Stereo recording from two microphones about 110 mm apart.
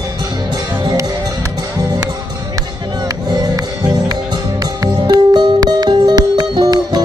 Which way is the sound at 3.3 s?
35° right (ahead or behind).